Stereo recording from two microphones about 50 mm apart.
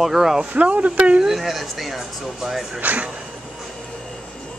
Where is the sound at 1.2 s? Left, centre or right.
Centre.